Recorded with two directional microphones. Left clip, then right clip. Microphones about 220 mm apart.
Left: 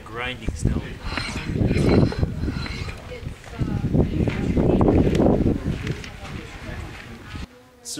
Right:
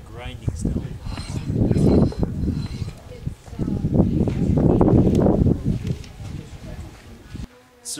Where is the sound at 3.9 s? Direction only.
65° left (ahead or behind).